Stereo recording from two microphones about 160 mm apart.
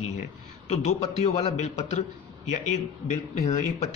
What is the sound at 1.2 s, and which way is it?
Speech, 40° left (ahead or behind).